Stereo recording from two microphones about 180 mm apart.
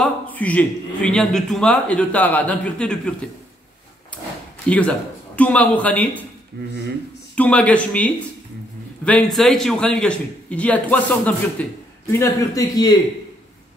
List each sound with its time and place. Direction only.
0.0 s a man's voice: 10° left (ahead or behind)
4.6 s a man's voice: 5° left (ahead or behind)
7.3 s a man's voice: 5° left (ahead or behind)